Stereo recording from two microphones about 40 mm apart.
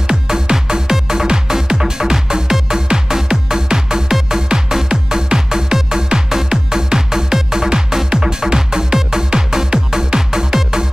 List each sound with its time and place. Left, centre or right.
0.1 s music: centre